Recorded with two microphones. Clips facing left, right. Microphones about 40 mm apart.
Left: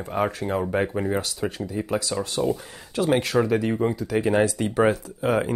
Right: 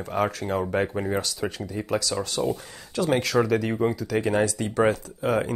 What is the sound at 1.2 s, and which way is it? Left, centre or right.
Speech, centre.